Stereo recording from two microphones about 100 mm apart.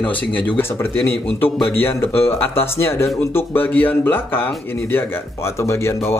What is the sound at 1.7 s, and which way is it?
Speech, 20° left (ahead or behind).